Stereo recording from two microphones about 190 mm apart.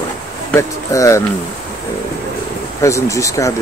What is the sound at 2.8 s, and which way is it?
Speech, 15° left (ahead or behind).